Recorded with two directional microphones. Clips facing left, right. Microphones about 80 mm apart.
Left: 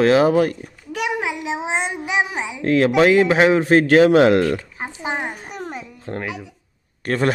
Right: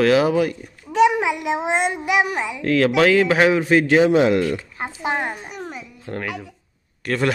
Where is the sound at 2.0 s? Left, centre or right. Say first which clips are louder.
Right 2 dB; centre.